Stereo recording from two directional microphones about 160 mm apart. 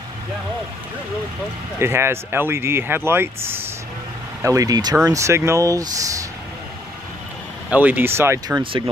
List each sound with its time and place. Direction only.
1.8 s speech: 15° right (ahead or behind)
7.7 s speech: 10° right (ahead or behind)